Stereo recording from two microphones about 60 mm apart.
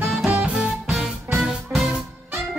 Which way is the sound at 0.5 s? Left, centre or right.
Centre.